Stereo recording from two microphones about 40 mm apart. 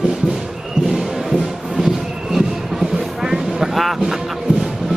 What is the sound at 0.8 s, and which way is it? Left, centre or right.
Music, centre.